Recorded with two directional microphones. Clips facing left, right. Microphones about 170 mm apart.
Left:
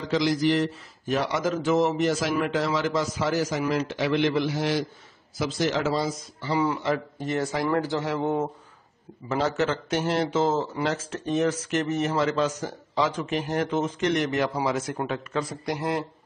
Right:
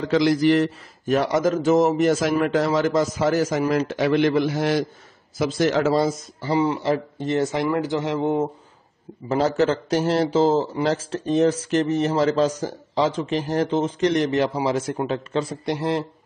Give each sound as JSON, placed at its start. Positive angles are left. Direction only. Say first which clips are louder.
{"t": 0.0, "sound": "a man's voice", "louder": "right 5 dB", "side_deg": -60}
{"t": 6.5, "sound": "a man's voice", "louder": "right 4 dB", "side_deg": -30}
{"t": 9.3, "sound": "a man's voice", "louder": "right 5 dB", "side_deg": -35}